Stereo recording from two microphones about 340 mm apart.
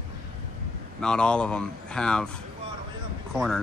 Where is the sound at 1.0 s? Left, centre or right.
Centre.